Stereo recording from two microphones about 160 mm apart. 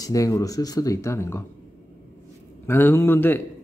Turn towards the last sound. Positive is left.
turn(degrees=15)  # may be behind; listen again after turning